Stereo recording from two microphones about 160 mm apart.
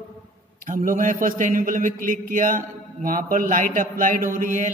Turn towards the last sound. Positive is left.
turn(degrees=-55)  # may be behind; listen again after turning